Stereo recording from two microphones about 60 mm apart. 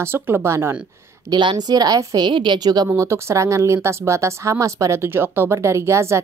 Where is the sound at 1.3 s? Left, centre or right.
Right.